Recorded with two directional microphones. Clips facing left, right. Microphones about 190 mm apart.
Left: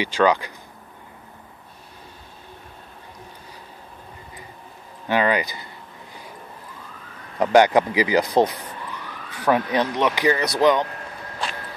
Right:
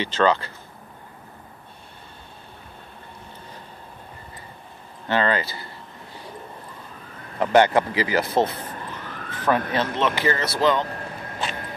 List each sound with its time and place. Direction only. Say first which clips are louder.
0.0 s speech: left 1 dB; 10° left (ahead or behind)
5.0 s speech: left 2 dB; 10° left (ahead or behind)
7.3 s speech: left 2 dB; 15° left (ahead or behind)
11.4 s a sound: even; 5° right (ahead or behind)